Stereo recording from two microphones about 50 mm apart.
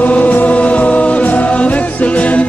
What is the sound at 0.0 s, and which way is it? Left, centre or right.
Music, left.